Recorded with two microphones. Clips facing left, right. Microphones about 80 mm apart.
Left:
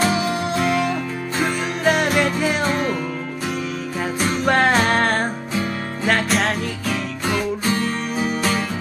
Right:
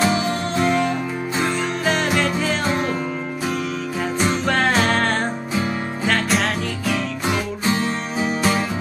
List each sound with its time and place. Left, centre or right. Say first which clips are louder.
0.0 s music: even; centre
4.5 s music: left 4 dB; centre
7.8 s music: even; right